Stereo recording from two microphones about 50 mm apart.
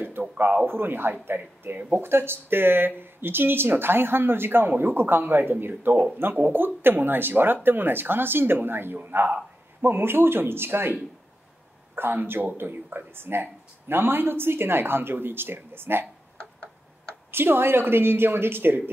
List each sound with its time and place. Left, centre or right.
0.7 s speech: right
17.1 s speech: right